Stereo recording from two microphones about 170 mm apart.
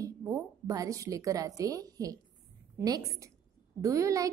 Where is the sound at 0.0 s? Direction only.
20° right (ahead or behind).